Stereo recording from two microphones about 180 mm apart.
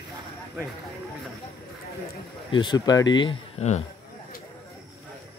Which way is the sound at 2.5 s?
25° left (ahead or behind).